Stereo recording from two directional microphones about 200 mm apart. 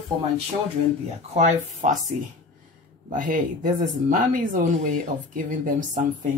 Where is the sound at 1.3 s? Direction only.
35° right (ahead or behind).